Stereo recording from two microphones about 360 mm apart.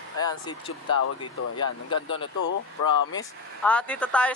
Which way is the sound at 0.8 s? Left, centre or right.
Left.